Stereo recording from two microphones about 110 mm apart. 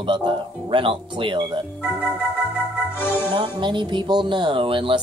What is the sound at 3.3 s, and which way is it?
Speech, 45° right (ahead or behind).